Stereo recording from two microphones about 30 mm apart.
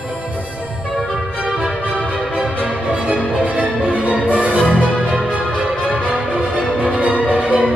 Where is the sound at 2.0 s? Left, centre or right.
Right.